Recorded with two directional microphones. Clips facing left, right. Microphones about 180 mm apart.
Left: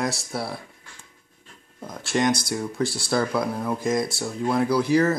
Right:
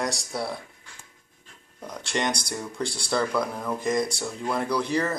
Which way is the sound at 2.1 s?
5° left (ahead or behind).